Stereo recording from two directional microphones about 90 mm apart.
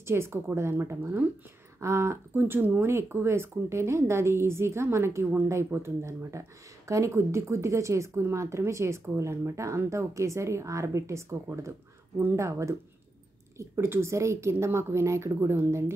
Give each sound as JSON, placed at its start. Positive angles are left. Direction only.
{"t": 0.0, "sound": "a woman's voice", "side_deg": -30}